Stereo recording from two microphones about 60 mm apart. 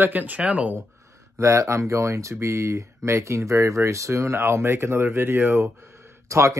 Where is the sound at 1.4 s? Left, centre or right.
Right.